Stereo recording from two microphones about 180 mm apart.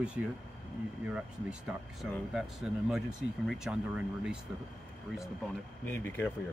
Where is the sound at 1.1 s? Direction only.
5° right (ahead or behind).